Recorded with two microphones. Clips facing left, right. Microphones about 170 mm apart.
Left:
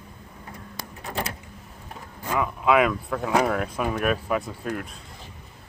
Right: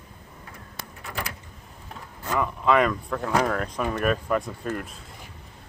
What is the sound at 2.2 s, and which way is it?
Speech, 10° left (ahead or behind).